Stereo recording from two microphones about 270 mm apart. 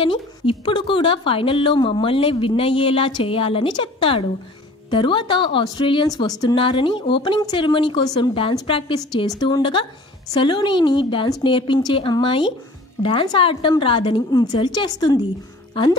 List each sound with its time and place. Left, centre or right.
0.0 s a woman's voice: centre